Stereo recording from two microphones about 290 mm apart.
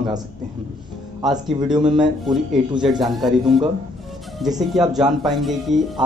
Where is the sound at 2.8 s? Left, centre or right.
Centre.